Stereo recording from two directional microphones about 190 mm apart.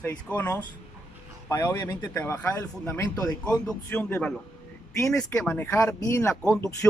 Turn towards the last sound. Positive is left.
turn(degrees=15)  # may be behind; listen again after turning